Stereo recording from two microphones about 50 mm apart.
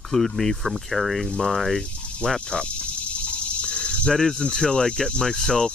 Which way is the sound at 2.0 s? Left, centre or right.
Centre.